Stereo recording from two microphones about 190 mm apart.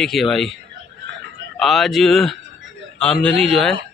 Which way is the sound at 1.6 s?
Centre (ahead or behind).